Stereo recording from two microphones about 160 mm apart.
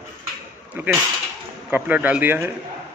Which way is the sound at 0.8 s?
15° right (ahead or behind).